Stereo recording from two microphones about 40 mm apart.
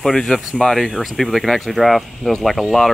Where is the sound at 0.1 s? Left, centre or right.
Centre.